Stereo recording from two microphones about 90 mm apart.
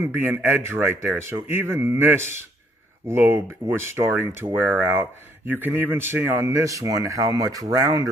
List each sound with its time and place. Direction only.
0.0 s speech: 25° right (ahead or behind)
6.4 s speech: 35° right (ahead or behind)